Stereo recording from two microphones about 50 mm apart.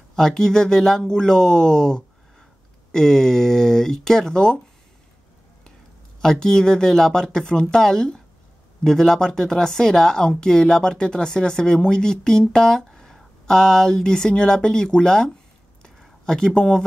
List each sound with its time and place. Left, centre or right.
0.1 s speech: centre
6.3 s speech: centre